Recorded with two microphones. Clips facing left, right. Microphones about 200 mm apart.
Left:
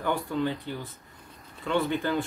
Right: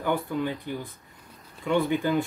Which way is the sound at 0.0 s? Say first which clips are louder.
Right 1 dB; 15° right (ahead or behind).